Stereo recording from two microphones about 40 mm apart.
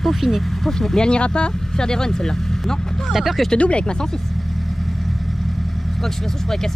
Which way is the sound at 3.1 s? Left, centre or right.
Centre.